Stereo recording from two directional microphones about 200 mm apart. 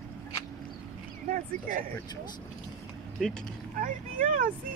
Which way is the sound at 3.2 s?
5° left (ahead or behind).